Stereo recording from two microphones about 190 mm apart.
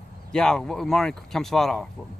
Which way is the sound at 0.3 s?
5° left (ahead or behind).